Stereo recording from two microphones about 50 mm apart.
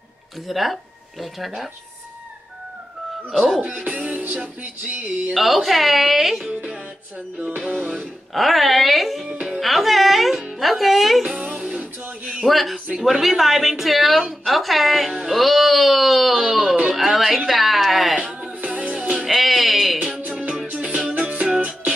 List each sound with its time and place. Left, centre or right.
0.5 s speech: centre
3.3 s speech: centre
3.7 s music: right
5.3 s speech: centre
7.5 s music: centre
8.3 s speech: centre
9.3 s music: right
9.6 s speech: centre
11.2 s music: right
11.8 s a sound: right
12.4 s speech: centre
18.1 s music: right
19.2 s music: centre
20.7 s music: right